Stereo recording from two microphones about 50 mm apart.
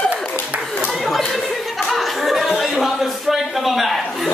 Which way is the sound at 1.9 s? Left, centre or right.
Centre.